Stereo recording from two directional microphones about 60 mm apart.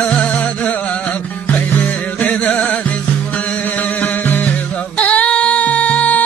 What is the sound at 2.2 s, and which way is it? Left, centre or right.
Music, left.